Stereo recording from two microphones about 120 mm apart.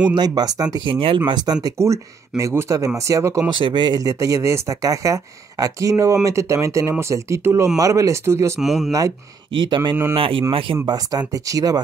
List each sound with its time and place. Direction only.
0.1 s speech: 35° right (ahead or behind)
3.4 s speech: 40° right (ahead or behind); by 8.5 s 25° right (ahead or behind)
8.5 s speech: centre (ahead or behind)
9.7 s speech: 40° right (ahead or behind)
10.9 s speech: 30° right (ahead or behind)